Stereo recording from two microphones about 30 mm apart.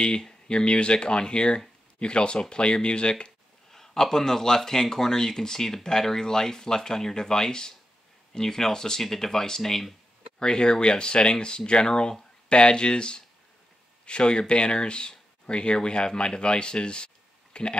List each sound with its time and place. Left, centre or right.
0.5 s speech: left
3.7 s a man's voice: centre
10.4 s speech: left